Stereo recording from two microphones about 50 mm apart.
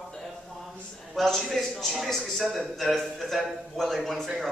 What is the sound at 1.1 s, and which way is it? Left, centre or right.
A man's voice, centre.